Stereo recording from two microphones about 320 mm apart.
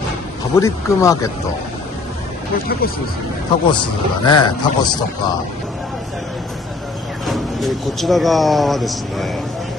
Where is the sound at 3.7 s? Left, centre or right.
Centre.